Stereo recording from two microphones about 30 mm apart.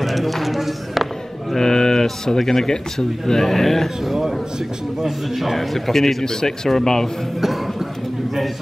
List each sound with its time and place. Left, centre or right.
0.0 s speech: centre
1.6 s speech: centre
4.0 s a man's voice: centre
6.2 s speech: centre
7.3 s a sound: centre